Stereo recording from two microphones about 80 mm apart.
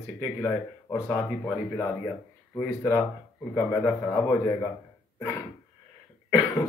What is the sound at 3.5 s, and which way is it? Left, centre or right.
A man's voice, left.